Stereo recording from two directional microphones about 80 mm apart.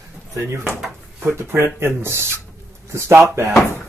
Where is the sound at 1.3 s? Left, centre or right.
Right.